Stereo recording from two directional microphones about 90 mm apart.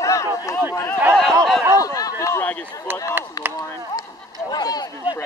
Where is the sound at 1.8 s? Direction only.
40° left (ahead or behind).